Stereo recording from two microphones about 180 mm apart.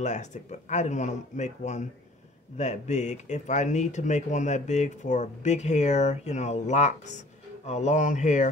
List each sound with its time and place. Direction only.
0.0 s speech: 40° left (ahead or behind)